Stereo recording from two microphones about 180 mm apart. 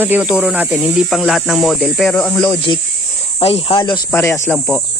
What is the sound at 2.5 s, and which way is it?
Speech, 25° left (ahead or behind).